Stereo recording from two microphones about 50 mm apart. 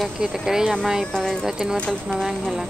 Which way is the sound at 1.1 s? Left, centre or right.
Centre.